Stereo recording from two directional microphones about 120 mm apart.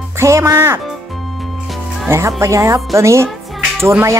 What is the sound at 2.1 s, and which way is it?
Speech, 20° right (ahead or behind).